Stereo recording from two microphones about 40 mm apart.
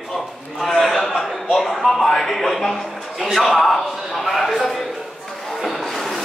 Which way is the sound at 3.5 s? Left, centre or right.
Centre.